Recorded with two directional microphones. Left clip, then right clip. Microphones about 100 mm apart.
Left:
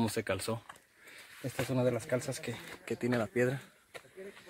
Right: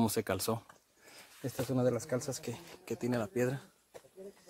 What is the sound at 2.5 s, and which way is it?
Speech, 10° right (ahead or behind).